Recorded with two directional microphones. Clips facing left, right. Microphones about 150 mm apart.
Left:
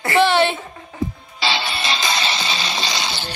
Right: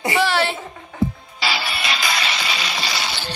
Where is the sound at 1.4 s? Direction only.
25° left (ahead or behind).